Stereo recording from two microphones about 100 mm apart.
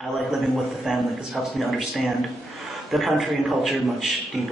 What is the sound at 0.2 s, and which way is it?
Speech, centre (ahead or behind).